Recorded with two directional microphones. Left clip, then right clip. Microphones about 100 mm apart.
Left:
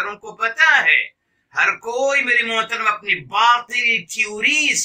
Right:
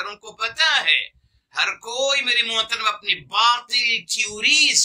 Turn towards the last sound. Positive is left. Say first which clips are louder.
# even
turn(degrees=-40)  # may be behind; listen again after turning